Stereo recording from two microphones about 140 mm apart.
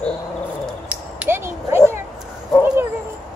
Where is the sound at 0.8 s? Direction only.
15° right (ahead or behind).